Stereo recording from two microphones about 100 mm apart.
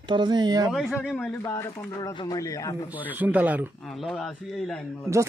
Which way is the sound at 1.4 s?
35° left (ahead or behind).